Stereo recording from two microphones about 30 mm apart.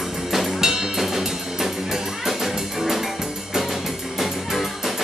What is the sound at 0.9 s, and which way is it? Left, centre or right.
Music, centre.